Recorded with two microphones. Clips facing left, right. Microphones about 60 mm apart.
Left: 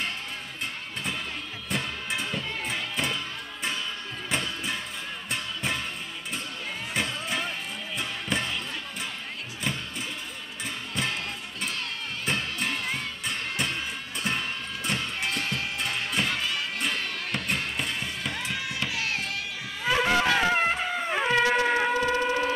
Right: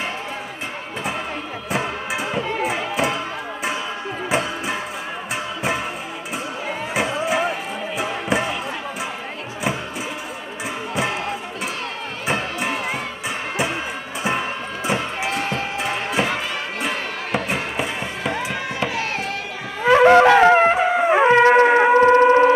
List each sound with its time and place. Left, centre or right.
1.7 s music: centre
4.3 s music: centre
6.9 s music: centre
11.0 s music: centre
12.3 s run: centre
14.2 s music: centre
19.8 s shofar: right